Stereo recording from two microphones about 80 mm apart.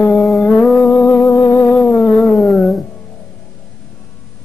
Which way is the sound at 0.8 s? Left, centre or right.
Left.